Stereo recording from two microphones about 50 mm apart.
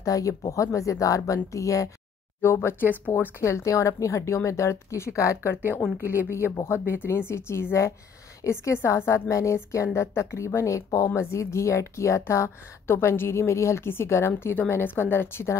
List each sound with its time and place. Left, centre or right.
0.0 s speech: left
2.4 s a woman's voice: left
3.3 s speech: left
6.3 s a woman's voice: left
8.4 s speech: left
8.8 s a woman's voice: left
9.3 s speech: left
9.9 s a woman's voice: left
11.1 s a woman's voice: left
13.4 s a woman's voice: left